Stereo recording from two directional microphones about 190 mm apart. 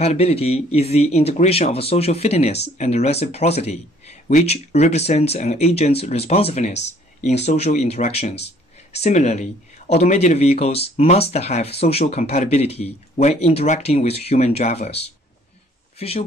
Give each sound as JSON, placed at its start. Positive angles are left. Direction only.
{"t": 0.0, "sound": "speech", "side_deg": 35}